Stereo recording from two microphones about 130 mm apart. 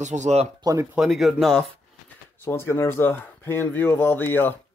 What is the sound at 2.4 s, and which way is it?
Speech, 20° left (ahead or behind).